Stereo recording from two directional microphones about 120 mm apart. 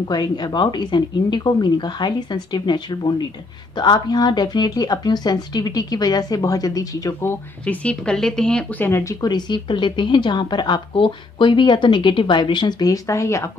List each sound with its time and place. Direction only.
0.1 s speech: 35° left (ahead or behind); by 9.1 s 20° left (ahead or behind)
9.2 s speech: 35° left (ahead or behind)